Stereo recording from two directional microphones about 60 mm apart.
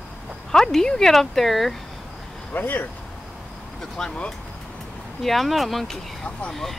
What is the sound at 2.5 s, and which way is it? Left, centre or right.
Speech, left.